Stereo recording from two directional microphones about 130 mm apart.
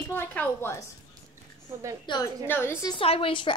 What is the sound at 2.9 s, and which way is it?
Speech, 45° left (ahead or behind).